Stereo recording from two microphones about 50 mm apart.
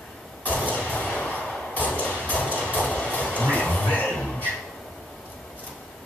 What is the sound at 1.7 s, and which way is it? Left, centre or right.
Music, left.